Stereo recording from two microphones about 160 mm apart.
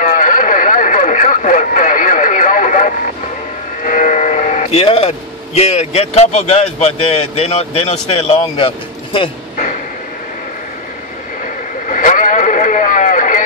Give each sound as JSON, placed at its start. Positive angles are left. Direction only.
{"t": 0.0, "sound": "radio", "side_deg": 60}
{"t": 3.8, "sound": "speech", "side_deg": 50}
{"t": 11.4, "sound": "radio", "side_deg": 55}